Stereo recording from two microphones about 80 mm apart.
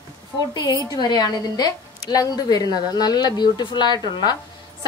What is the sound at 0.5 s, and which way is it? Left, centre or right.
A woman's voice, left.